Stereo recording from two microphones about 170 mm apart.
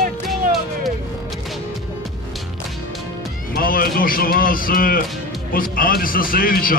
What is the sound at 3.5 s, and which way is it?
Speech, 60° left (ahead or behind).